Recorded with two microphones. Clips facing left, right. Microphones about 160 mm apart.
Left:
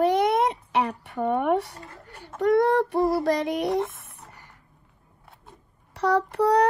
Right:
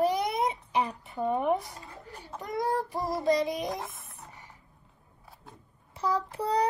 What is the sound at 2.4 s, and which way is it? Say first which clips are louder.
Child singing: left 11 dB; 70° left (ahead or behind).